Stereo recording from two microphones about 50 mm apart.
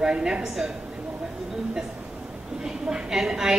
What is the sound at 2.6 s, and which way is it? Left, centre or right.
A woman's voice, centre.